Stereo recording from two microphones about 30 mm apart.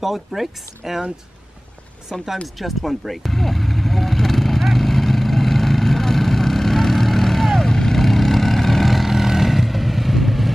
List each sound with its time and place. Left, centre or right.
0.0 s speech: centre
2.1 s speech: left
2.4 s vehicle: centre